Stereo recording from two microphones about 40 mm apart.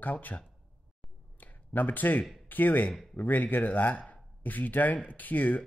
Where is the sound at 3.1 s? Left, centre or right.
Left.